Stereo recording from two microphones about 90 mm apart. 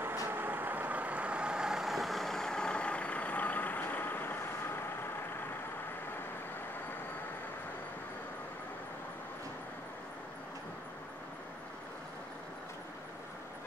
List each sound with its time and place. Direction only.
0.0 s vehicle: 25° right (ahead or behind); by 4.7 s 25° left (ahead or behind)